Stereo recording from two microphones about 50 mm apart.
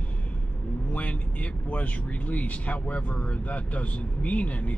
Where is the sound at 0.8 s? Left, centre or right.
Left.